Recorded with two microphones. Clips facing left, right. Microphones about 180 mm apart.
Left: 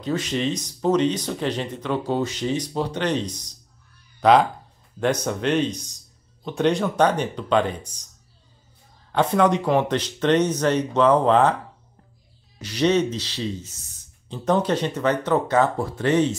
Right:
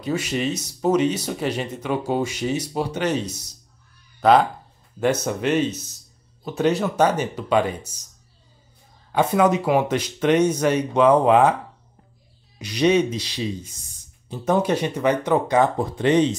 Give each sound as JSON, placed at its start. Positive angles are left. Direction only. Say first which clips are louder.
{"t": 0.0, "sound": "speech", "louder": "even", "side_deg": -10}
{"t": 9.1, "sound": "speech", "louder": "right 1 dB", "side_deg": -5}
{"t": 12.5, "sound": "speech", "louder": "right 2 dB", "side_deg": -15}